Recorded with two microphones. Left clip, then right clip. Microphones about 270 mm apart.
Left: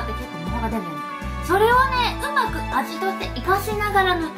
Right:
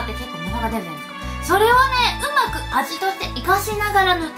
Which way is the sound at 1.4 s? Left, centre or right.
Centre.